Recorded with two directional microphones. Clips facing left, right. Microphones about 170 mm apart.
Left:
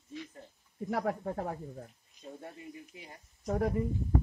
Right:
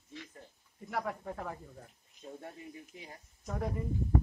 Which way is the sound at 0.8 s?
45° left (ahead or behind).